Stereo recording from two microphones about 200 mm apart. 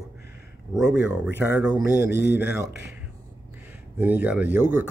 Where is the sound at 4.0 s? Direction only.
10° right (ahead or behind).